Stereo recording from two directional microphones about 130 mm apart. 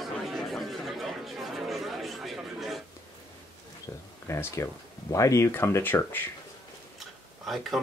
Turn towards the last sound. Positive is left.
turn(degrees=0)  # may be behind; listen again after turning